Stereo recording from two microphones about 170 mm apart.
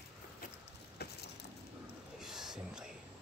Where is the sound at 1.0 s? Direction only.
70° left (ahead or behind).